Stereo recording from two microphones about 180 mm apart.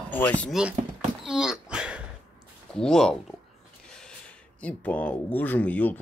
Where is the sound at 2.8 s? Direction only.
5° left (ahead or behind).